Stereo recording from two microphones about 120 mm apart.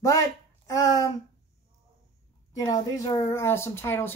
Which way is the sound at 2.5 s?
30° left (ahead or behind).